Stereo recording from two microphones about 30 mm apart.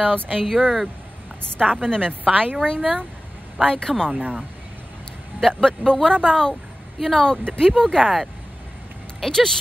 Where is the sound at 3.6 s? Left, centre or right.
Left.